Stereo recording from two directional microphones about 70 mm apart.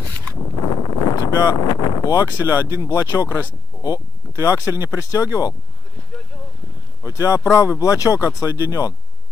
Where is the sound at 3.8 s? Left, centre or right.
Left.